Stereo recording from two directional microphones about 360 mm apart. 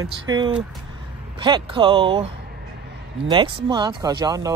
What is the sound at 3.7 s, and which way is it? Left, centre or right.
Speech, centre.